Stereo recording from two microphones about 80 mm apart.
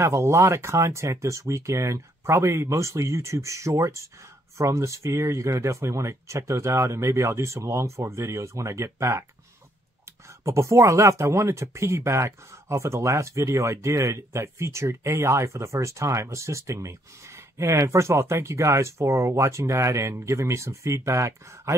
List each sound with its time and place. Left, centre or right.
0.0 s speech: right
10.4 s speech: right